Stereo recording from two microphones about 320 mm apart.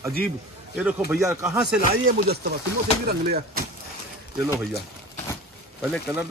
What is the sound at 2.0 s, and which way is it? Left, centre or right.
Speech, right.